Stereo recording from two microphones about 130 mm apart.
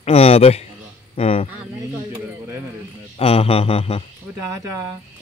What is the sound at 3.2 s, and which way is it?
Speech, 50° left (ahead or behind).